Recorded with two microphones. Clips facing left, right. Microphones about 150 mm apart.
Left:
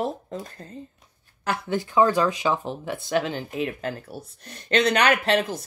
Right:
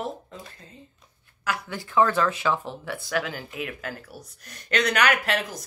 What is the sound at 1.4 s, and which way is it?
Speech, 25° left (ahead or behind).